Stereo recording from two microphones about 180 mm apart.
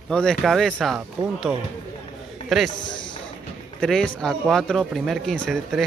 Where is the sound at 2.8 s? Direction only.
25° left (ahead or behind).